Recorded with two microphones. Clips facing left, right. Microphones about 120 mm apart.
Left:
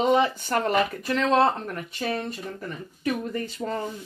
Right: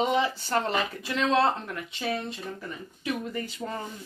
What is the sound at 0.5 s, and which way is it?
Speech, 50° left (ahead or behind).